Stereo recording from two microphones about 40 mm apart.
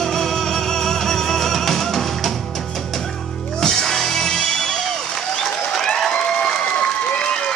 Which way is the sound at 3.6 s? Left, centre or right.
Centre.